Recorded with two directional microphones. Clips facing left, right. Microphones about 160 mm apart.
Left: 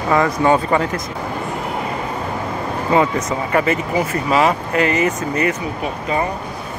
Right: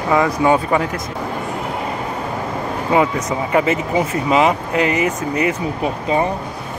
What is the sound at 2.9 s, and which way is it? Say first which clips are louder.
Speech: even; 10° right (ahead or behind).